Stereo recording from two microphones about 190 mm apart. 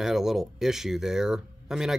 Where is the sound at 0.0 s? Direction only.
Centre (ahead or behind).